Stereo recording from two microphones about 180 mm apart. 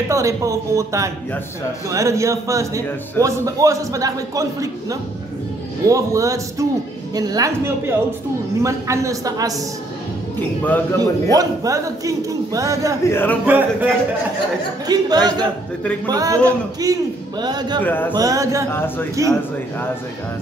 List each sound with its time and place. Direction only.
0.1 s a man's voice: 15° right (ahead or behind)
10.6 s a man's voice: 10° left (ahead or behind)
11.3 s a man's voice: 20° right (ahead or behind)
13.1 s a man's voice: 10° left (ahead or behind)
13.5 s a man's voice: 10° right (ahead or behind)
14.9 s a man's voice: 20° right (ahead or behind)
17.8 s a man's voice: 10° left (ahead or behind)
18.1 s a man's voice: 20° right (ahead or behind)
18.7 s a man's voice: 10° left (ahead or behind)